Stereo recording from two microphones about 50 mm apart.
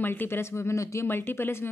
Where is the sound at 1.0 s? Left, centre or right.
Left.